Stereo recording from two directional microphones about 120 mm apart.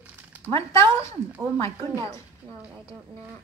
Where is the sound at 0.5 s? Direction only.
25° left (ahead or behind).